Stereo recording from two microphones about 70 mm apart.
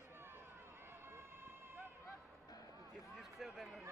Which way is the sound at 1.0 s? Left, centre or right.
Right.